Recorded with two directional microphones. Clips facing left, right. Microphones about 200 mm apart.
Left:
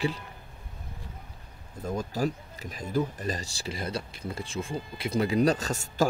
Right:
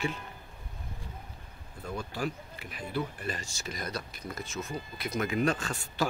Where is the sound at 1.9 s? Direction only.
40° left (ahead or behind).